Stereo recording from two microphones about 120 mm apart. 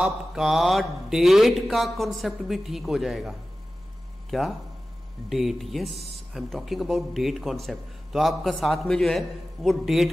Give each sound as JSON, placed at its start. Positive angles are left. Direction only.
{"t": 0.0, "sound": "speech", "side_deg": -5}